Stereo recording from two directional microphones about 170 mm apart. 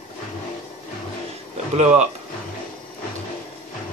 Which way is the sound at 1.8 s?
40° right (ahead or behind).